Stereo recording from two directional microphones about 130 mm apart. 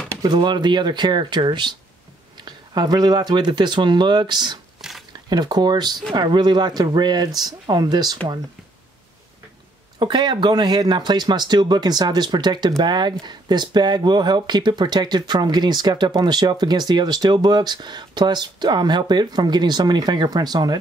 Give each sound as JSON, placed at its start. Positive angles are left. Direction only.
{"t": 0.2, "sound": "speech", "side_deg": -35}
{"t": 9.9, "sound": "speech", "side_deg": -35}